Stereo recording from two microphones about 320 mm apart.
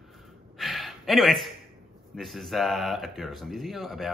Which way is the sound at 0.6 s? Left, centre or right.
Centre.